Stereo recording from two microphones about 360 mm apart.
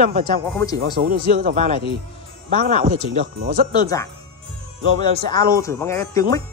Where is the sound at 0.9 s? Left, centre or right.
Right.